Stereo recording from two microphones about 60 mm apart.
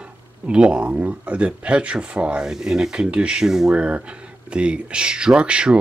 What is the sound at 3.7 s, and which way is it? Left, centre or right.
Speech, centre.